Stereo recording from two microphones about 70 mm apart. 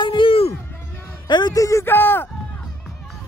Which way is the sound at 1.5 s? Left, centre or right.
Left.